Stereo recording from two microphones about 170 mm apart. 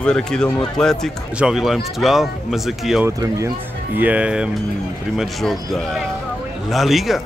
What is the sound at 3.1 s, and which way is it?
Speech, 20° right (ahead or behind).